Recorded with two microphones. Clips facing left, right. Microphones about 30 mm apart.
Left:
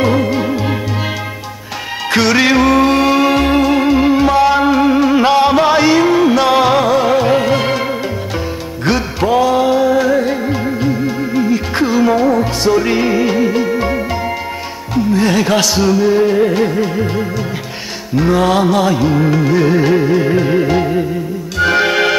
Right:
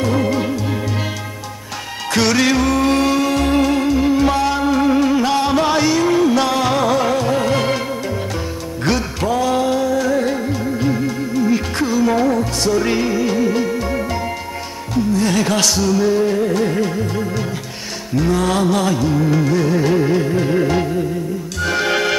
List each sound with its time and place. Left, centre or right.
0.2 s music: centre
2.3 s music: left
12.1 s music: centre
15.1 s music: centre